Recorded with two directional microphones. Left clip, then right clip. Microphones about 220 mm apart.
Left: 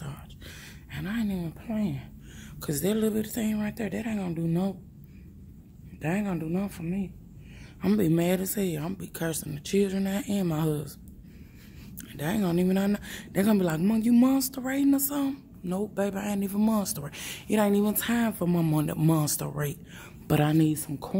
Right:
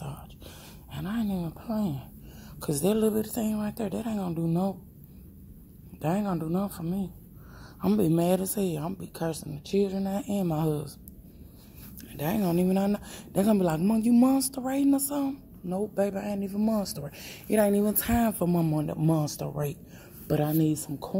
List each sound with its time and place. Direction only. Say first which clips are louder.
0.9 s speech: even; centre (ahead or behind)
5.9 s speech: right 2 dB; 5° right (ahead or behind)
7.8 s speech: even; centre (ahead or behind)
12.0 s speech: right 1 dB; centre (ahead or behind)
18.7 s speech: left 1 dB; 15° left (ahead or behind)
20.2 s speech: left 2 dB; 15° left (ahead or behind)
20.6 s speech: left 1 dB; 5° left (ahead or behind)